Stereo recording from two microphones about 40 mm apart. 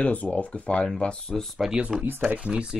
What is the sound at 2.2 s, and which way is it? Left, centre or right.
Speech, right.